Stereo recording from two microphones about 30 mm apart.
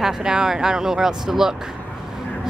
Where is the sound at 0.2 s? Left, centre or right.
Right.